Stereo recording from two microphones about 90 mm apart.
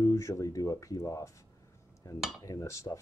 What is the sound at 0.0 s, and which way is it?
Speech, 35° left (ahead or behind).